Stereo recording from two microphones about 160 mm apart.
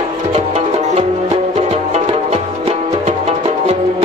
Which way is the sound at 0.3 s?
40° right (ahead or behind).